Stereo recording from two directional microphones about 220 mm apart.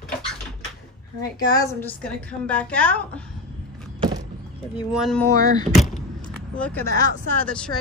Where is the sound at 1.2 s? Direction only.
15° left (ahead or behind).